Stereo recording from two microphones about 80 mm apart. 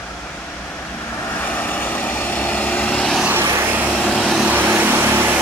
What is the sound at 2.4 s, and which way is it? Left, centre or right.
Vehicle, left.